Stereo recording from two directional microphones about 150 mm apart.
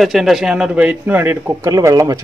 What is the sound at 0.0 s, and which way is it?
A man's voice, centre (ahead or behind).